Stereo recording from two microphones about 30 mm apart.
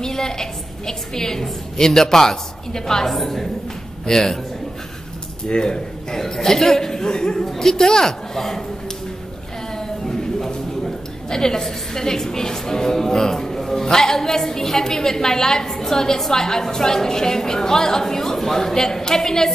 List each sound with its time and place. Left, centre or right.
0.0 s a woman's voice: centre
3.1 s a woman's voice: centre
5.5 s a woman's voice: left
6.1 s a woman's voice: centre
7.1 s a woman's voice: left
7.5 s a woman's voice: centre
9.8 s a sound: centre
11.2 s a woman's voice: left